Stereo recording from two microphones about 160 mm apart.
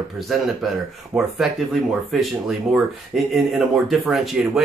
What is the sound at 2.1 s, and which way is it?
Speech, centre (ahead or behind).